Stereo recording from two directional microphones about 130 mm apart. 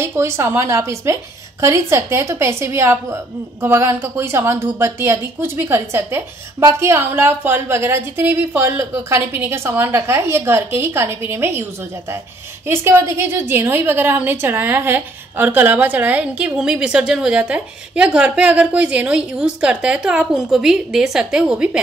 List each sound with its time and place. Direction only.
0.0 s a woman's voice: 20° right (ahead or behind)
12.6 s a woman's voice: 20° right (ahead or behind)